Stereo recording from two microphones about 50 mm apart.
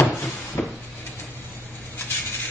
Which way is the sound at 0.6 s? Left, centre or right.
Left.